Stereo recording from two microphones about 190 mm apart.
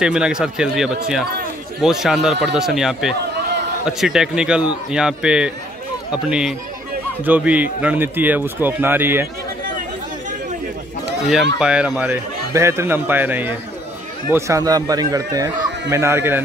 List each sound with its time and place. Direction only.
0.0 s speech: 5° right (ahead or behind)
11.6 s speech: 5° right (ahead or behind)